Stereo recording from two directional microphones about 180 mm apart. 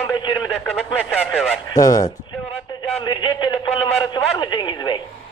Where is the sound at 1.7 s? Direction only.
20° left (ahead or behind).